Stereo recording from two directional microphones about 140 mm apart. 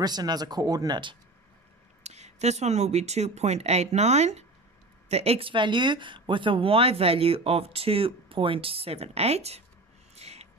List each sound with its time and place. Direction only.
0.0 s speech: 30° right (ahead or behind)
2.0 s speech: 50° right (ahead or behind)
10.1 s a sound: 50° right (ahead or behind)